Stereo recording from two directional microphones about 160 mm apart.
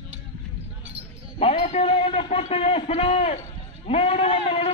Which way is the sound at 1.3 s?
35° left (ahead or behind).